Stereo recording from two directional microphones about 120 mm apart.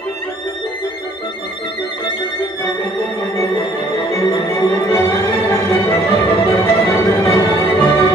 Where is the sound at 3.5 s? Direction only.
45° left (ahead or behind).